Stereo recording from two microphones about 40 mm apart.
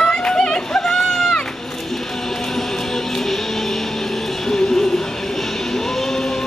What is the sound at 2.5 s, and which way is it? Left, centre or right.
Music, centre.